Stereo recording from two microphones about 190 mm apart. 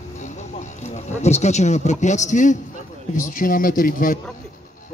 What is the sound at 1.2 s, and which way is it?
A man's voice, 35° left (ahead or behind).